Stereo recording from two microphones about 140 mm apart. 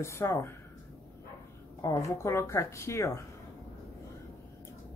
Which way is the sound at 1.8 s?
25° left (ahead or behind).